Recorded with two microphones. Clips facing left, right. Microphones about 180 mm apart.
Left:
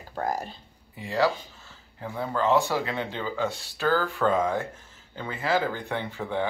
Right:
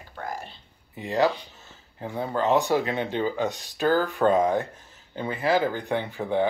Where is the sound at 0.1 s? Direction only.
40° left (ahead or behind).